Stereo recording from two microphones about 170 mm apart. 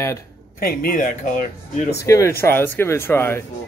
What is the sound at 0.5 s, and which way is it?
Speech, 55° left (ahead or behind).